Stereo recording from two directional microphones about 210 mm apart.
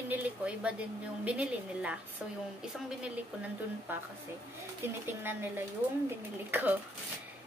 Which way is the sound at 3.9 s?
10° right (ahead or behind).